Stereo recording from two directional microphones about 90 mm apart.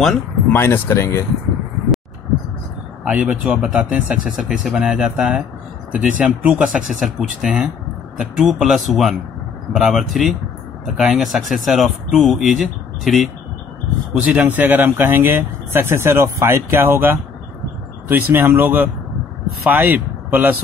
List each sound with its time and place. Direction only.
0.5 s speech: 25° left (ahead or behind)
3.1 s speech: 10° right (ahead or behind)
14.1 s speech: 15° right (ahead or behind)